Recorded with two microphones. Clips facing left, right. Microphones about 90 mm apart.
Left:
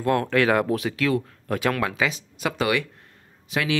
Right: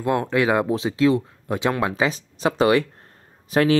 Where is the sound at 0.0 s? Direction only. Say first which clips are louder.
Even; 20° right (ahead or behind).